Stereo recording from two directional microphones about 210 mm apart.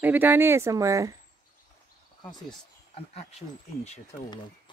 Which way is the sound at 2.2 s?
20° left (ahead or behind).